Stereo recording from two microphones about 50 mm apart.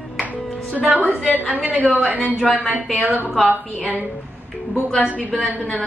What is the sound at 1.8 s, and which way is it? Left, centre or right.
A woman's voice, right.